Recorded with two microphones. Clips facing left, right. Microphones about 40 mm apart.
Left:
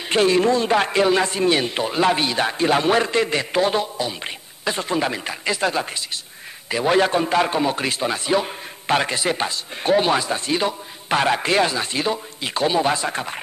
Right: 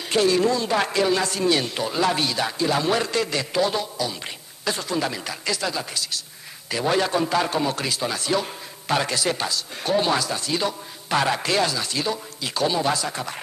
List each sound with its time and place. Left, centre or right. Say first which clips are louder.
0.1 s a man's voice: left 3 dB; left
6.7 s a man's voice: left 4 dB; left